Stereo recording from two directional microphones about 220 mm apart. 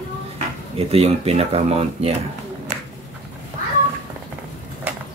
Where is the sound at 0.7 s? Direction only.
25° right (ahead or behind).